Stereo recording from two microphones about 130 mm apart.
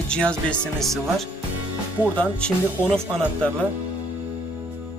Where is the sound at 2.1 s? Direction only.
10° left (ahead or behind).